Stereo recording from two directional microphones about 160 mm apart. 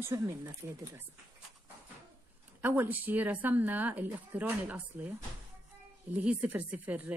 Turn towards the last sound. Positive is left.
turn(degrees=-10)  # may be behind; listen again after turning